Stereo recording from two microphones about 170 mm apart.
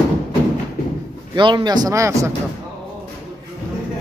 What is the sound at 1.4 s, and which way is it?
Speech, 30° right (ahead or behind).